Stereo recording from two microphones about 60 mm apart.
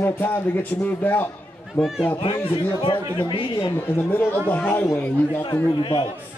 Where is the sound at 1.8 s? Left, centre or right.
Centre.